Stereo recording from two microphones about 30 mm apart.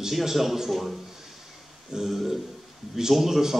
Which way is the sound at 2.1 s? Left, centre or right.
Centre.